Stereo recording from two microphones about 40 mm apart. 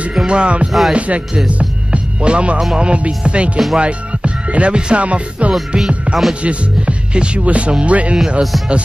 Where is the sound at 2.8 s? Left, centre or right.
Right.